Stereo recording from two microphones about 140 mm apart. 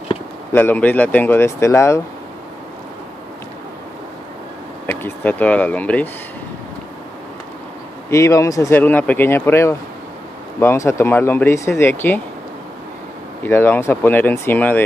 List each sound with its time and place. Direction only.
0.5 s speech: 15° left (ahead or behind)
4.8 s speech: 15° left (ahead or behind)
8.1 s speech: 20° left (ahead or behind)
13.4 s speech: 15° left (ahead or behind)